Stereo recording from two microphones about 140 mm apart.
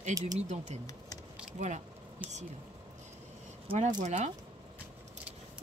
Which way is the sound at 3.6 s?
55° right (ahead or behind).